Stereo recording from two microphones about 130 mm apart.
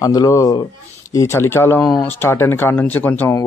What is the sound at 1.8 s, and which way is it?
Speech, 30° left (ahead or behind).